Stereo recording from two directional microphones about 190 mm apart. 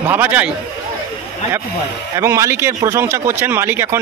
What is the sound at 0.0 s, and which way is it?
Speech, 10° right (ahead or behind).